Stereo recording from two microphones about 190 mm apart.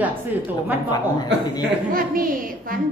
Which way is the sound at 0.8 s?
20° left (ahead or behind).